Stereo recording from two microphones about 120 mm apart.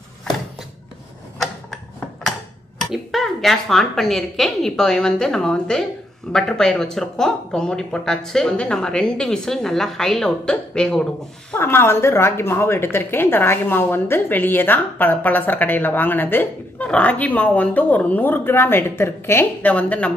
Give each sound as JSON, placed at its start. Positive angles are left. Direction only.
{"t": 2.9, "sound": "speech", "side_deg": 0}
{"t": 11.5, "sound": "a woman's voice", "side_deg": 20}